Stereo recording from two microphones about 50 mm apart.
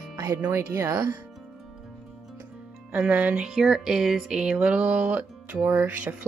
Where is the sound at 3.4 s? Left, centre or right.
Centre.